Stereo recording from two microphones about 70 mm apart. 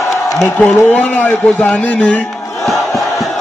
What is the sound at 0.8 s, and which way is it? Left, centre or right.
A man's voice, left.